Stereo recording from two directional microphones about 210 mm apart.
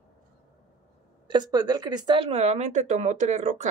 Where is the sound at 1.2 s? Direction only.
20° right (ahead or behind).